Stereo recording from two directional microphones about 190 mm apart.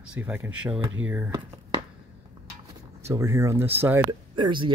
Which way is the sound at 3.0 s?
15° right (ahead or behind).